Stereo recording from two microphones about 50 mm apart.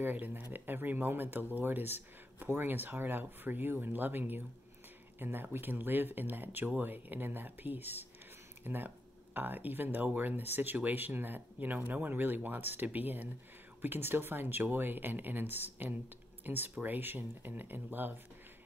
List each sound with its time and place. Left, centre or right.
0.0 s speech: right